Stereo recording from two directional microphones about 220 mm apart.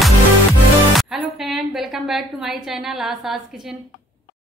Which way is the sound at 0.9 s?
Centre (ahead or behind).